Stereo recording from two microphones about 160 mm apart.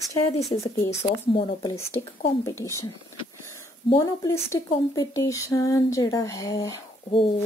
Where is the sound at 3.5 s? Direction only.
20° left (ahead or behind).